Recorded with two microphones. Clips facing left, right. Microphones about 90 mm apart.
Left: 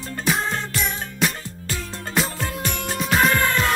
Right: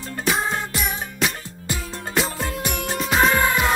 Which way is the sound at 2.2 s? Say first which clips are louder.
Right 1 dB; centre (ahead or behind).